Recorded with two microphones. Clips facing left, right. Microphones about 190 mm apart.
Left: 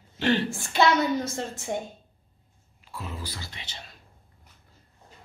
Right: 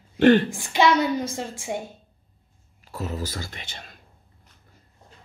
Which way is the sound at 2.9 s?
45° right (ahead or behind).